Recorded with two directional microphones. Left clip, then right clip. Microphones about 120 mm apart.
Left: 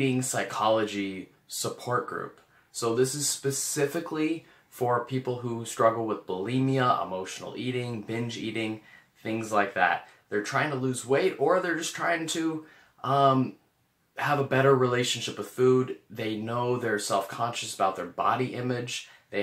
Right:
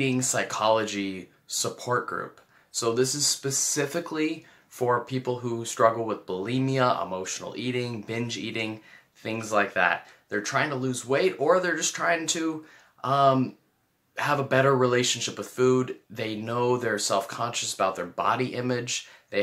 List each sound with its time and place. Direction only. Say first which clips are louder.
0.0 s speech: right 2 dB; 25° right (ahead or behind)
2.7 s speech: right 1 dB; 20° right (ahead or behind)